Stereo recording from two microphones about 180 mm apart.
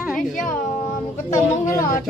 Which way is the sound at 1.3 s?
45° left (ahead or behind).